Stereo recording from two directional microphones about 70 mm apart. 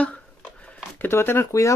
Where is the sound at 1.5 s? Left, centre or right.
Left.